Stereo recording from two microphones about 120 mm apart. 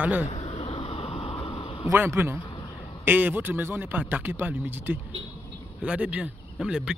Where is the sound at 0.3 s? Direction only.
60° left (ahead or behind).